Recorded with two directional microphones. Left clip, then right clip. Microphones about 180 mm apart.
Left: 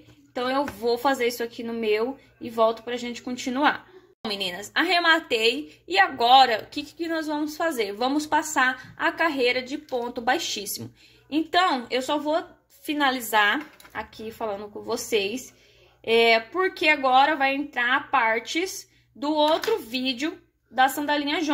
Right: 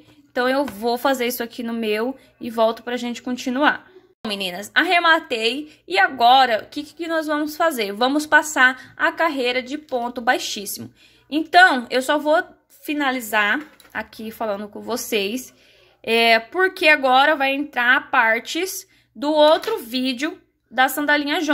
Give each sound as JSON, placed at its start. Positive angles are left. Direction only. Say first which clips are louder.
{"t": 0.4, "sound": "a woman's voice", "louder": "right 5 dB", "side_deg": -40}
{"t": 12.8, "sound": "a woman's voice", "louder": "right 2 dB", "side_deg": -20}